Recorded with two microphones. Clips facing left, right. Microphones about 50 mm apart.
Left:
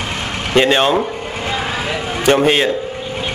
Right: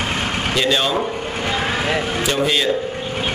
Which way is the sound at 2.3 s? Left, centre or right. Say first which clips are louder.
Left 8 dB; left.